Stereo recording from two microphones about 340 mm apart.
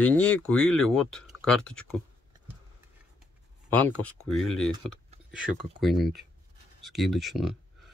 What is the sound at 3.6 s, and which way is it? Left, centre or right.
Speech, centre.